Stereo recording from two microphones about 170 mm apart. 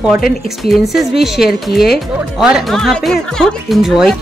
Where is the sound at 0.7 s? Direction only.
Centre (ahead or behind).